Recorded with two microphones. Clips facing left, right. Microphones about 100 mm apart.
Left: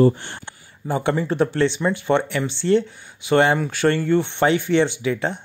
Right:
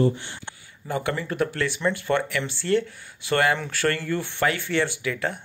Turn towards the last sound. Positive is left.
turn(degrees=25)  # may be behind; listen again after turning